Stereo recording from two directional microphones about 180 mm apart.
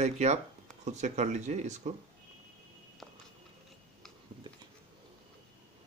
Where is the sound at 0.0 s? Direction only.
40° right (ahead or behind).